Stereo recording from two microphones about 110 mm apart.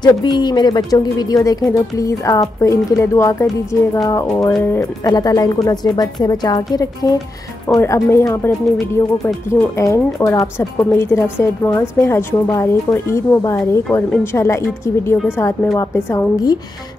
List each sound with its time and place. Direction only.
0.0 s a woman's voice: 40° left (ahead or behind)
7.8 s a woman's voice: 25° left (ahead or behind)